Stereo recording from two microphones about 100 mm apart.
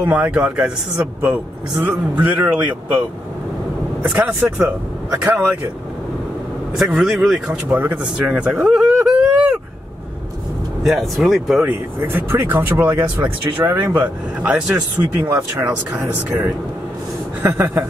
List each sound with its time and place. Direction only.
0.0 s speech: 15° right (ahead or behind)
1.8 s speech: 15° right (ahead or behind)
4.3 s speech: 25° right (ahead or behind)
6.8 s speech: 5° right (ahead or behind)
10.8 s speech: 5° right (ahead or behind)
11.6 s speech: 20° right (ahead or behind)